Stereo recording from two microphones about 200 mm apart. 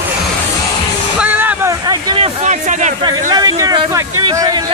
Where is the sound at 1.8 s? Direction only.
25° right (ahead or behind).